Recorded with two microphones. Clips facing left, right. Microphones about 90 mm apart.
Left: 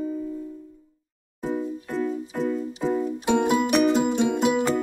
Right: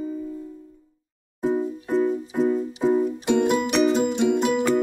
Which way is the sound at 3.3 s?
5° left (ahead or behind).